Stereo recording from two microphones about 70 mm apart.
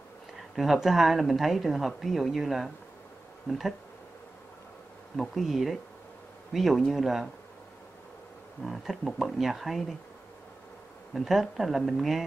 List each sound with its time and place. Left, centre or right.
0.6 s a woman's voice: centre
5.1 s a woman's voice: centre
8.6 s a woman's voice: centre
11.1 s a woman's voice: centre